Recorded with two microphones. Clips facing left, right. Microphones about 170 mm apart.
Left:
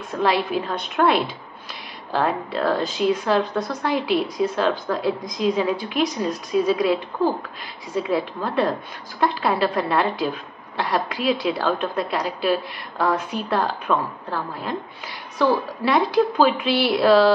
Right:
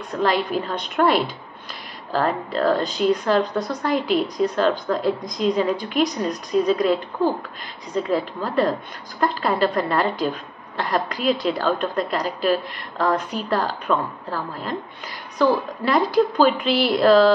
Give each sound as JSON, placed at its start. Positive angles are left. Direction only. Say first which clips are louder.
{"t": 0.1, "sound": "a woman's voice", "louder": "even", "side_deg": 5}